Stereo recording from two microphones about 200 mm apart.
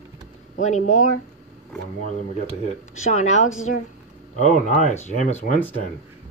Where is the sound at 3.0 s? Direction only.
35° left (ahead or behind).